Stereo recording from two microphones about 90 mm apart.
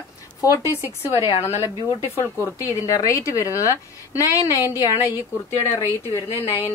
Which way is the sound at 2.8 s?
40° left (ahead or behind).